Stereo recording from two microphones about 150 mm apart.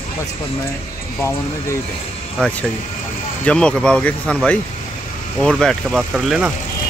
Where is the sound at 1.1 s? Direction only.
20° left (ahead or behind).